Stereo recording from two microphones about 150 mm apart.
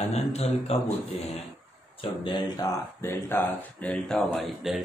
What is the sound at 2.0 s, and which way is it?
Speech, 30° left (ahead or behind).